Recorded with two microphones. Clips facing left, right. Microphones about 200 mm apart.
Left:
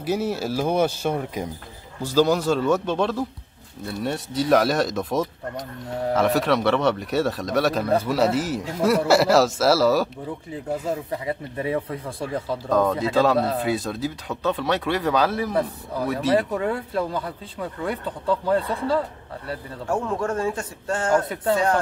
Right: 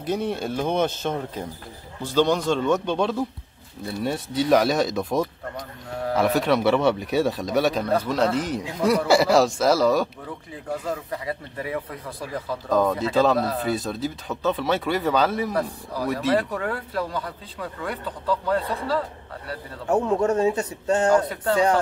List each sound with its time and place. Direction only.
0.0 s speech: 5° left (ahead or behind)
10.2 s speech: 25° left (ahead or behind)
12.6 s speech: centre (ahead or behind)
15.5 s speech: 25° left (ahead or behind)
16.1 s speech: centre (ahead or behind)
16.3 s speech: 20° left (ahead or behind)
19.9 s a man's voice: 20° right (ahead or behind)